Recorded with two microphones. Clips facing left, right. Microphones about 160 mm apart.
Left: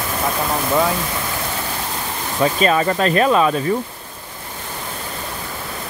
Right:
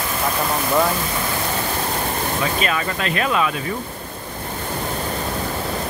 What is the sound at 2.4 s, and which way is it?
Speech, 35° left (ahead or behind).